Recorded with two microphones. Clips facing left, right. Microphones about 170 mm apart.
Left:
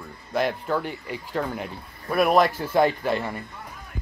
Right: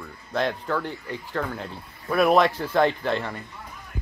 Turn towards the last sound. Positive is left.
turn(degrees=10)  # may be behind; listen again after turning